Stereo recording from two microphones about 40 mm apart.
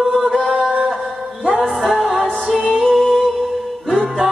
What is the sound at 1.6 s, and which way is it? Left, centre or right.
Music, centre.